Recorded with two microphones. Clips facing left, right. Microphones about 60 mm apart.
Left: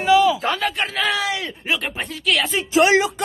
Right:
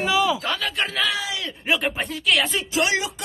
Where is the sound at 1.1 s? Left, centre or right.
Left.